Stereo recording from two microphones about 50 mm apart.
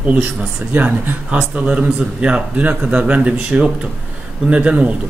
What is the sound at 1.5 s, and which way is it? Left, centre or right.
Speech, right.